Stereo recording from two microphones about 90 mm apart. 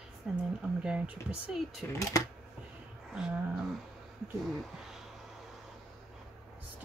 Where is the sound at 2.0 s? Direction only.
40° left (ahead or behind).